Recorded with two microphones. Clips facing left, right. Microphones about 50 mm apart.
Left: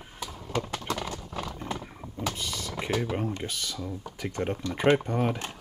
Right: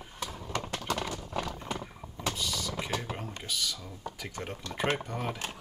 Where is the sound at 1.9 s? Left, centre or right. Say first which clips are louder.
Left 2 dB; centre.